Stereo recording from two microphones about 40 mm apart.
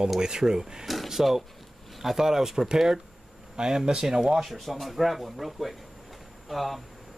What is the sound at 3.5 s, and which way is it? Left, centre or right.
Speech, centre.